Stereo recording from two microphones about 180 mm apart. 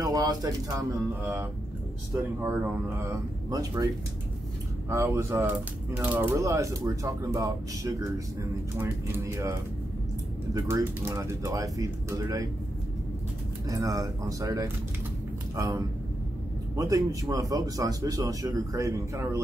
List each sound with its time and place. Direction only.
0.0 s speech: 20° right (ahead or behind)
3.4 s speech: 20° right (ahead or behind)
13.7 s speech: 20° right (ahead or behind)